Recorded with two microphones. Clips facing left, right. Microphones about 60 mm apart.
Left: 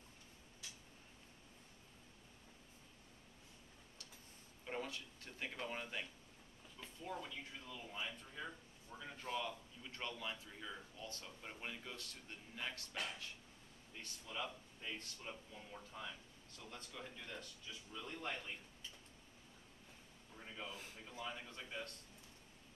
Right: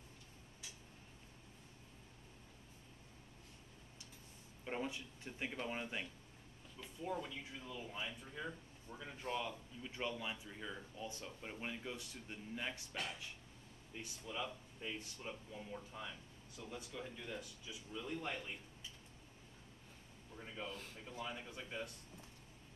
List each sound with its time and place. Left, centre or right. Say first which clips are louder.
4.6 s speech: right 3 dB; centre
12.9 s speech: right 1 dB; centre
20.3 s speech: right 3 dB; centre